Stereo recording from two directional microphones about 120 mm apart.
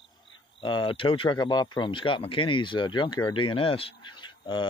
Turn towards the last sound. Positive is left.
turn(degrees=40)  # may be behind; listen again after turning